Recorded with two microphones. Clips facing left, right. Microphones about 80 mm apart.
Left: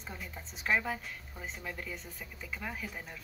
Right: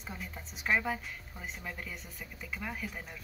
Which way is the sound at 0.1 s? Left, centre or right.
Centre.